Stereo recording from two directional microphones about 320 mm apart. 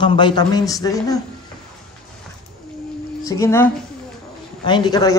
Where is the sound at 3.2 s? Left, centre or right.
Centre.